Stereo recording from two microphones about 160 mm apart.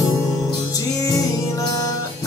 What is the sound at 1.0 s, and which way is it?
Music, 20° left (ahead or behind).